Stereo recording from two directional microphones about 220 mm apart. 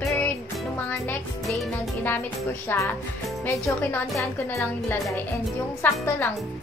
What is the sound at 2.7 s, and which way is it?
Speech, 10° left (ahead or behind).